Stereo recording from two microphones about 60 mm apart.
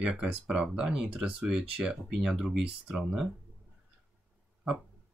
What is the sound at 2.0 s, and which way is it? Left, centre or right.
Speech, centre.